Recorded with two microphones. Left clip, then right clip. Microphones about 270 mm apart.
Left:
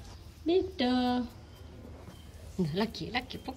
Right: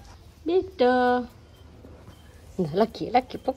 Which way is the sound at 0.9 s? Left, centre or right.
Centre.